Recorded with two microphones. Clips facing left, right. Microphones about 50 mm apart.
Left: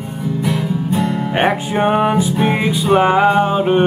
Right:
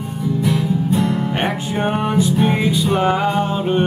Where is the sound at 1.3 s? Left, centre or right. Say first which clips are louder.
Left 5 dB; left.